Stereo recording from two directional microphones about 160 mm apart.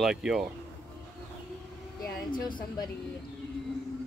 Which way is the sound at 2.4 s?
30° left (ahead or behind).